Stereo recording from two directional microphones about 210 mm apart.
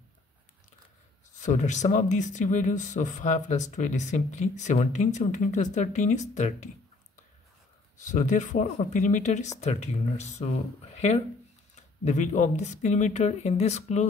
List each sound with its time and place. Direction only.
1.4 s speech: 35° left (ahead or behind)
8.0 s speech: 35° left (ahead or behind)